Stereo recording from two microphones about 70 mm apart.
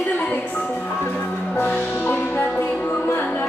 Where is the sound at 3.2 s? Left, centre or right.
Left.